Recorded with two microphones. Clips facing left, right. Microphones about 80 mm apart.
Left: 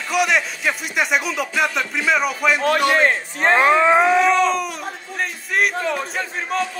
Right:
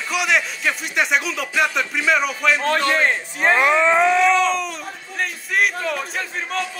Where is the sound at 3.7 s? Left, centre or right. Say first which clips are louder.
Left 2 dB; centre.